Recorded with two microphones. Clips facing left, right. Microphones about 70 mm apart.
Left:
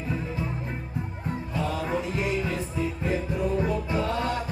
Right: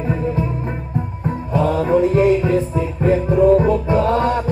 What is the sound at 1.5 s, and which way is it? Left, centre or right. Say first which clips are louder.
Music: right 13 dB; right.